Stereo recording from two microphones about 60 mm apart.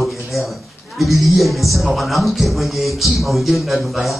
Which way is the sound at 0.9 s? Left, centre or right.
Centre.